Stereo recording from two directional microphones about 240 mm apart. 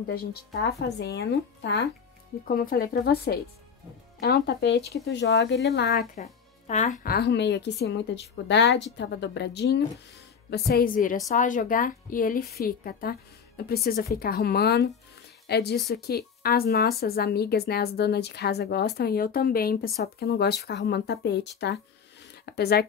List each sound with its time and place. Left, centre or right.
0.0 s a woman's voice: left
6.1 s a woman's voice: left